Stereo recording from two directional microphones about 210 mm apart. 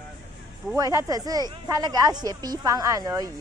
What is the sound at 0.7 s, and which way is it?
Speech, 15° right (ahead or behind).